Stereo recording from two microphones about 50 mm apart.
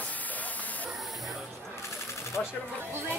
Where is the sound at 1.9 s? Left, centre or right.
Left.